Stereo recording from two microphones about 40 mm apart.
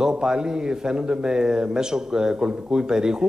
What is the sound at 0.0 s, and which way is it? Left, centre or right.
A man's voice, centre.